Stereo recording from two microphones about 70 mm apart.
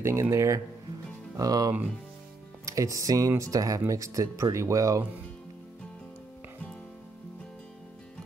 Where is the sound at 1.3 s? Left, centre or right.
Right.